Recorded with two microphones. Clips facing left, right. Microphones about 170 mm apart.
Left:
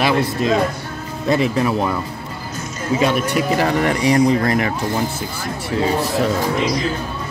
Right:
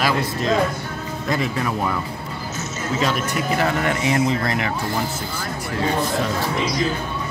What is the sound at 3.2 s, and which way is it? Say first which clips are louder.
Speech: left 4 dB; 35° left (ahead or behind).